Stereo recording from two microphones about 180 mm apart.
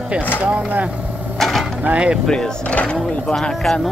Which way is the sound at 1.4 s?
Centre (ahead or behind).